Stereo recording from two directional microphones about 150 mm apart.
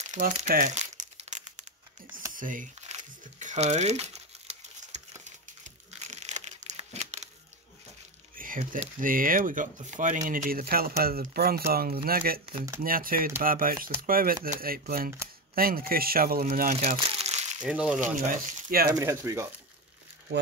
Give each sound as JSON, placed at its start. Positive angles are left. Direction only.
{"t": 0.1, "sound": "crumpling", "side_deg": -55}
{"t": 2.3, "sound": "crumpling", "side_deg": -65}
{"t": 8.4, "sound": "speech", "side_deg": -65}
{"t": 10.7, "sound": "speech", "side_deg": -85}
{"t": 12.8, "sound": "speech", "side_deg": -70}
{"t": 16.4, "sound": "speech", "side_deg": -65}
{"t": 16.8, "sound": "crumpling", "side_deg": -45}
{"t": 17.6, "sound": "speech", "side_deg": -5}
{"t": 18.0, "sound": "speech", "side_deg": -70}
{"t": 18.9, "sound": "speech", "side_deg": -20}